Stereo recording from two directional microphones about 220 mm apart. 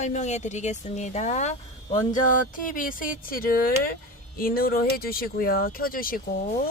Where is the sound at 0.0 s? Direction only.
30° left (ahead or behind).